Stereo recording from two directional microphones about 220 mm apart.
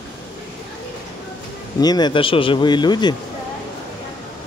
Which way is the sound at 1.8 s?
20° left (ahead or behind).